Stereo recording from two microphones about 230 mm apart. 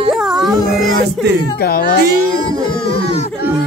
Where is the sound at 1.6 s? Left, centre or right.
Left.